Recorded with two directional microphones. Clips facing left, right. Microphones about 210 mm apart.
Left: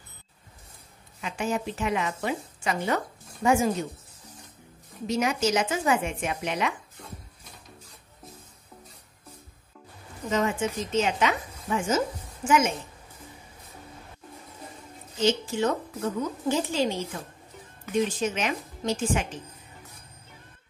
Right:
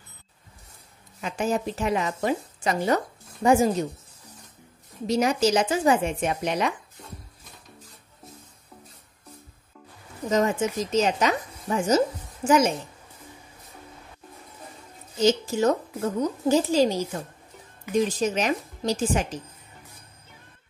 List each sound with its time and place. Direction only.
1.2 s a woman's voice: 40° right (ahead or behind)
5.0 s a woman's voice: 35° right (ahead or behind)
10.3 s a woman's voice: 40° right (ahead or behind)
15.1 s a woman's voice: 40° right (ahead or behind)